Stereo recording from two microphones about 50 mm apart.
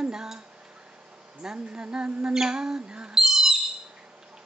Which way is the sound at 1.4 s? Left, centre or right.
Centre.